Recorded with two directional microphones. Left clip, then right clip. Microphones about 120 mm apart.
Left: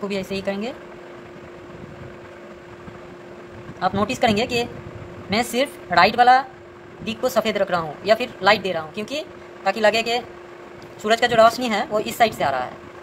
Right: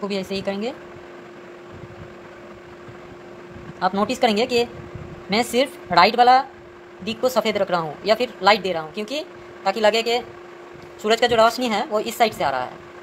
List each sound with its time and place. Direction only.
0.1 s a woman's voice: 30° right (ahead or behind)
3.9 s a woman's voice: 20° right (ahead or behind)
7.1 s speech: 20° right (ahead or behind)